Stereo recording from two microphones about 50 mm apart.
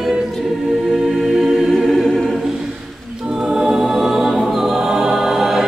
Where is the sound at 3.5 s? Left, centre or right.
Centre.